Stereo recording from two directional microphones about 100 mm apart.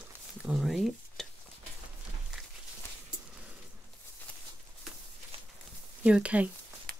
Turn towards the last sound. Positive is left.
turn(degrees=-15)  # may be behind; listen again after turning